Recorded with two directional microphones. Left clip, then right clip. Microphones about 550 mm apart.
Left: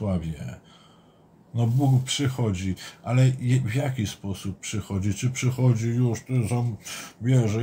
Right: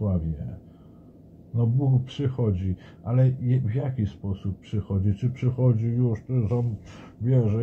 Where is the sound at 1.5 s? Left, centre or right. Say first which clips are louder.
Left 2 dB; centre.